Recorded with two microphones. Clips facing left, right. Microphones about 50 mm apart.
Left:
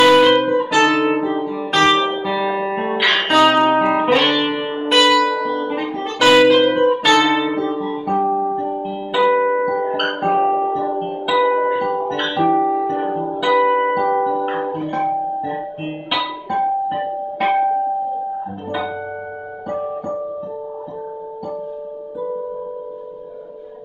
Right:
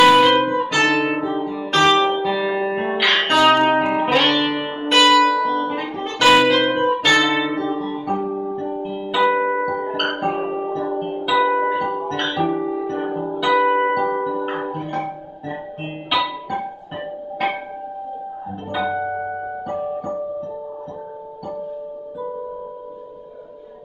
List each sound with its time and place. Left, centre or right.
0.0 s guitar: centre
3.4 s music: centre
8.4 s music: centre
8.8 s music: centre
12.6 s music: centre
16.4 s music: centre
18.7 s music: centre